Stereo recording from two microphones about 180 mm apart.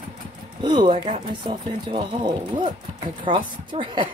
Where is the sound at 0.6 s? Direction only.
25° right (ahead or behind).